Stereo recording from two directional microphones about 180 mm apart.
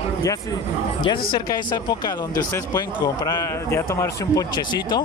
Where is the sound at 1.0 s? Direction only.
25° left (ahead or behind).